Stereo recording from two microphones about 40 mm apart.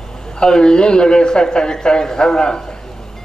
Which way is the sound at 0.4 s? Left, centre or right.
Left.